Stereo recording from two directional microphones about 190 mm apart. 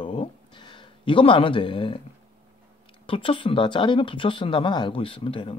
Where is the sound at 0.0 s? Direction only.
25° left (ahead or behind).